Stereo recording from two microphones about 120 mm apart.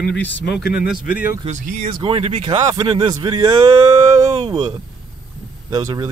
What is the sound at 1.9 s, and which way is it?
Speech, 45° right (ahead or behind).